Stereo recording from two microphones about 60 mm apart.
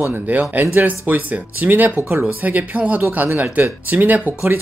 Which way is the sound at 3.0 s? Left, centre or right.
Right.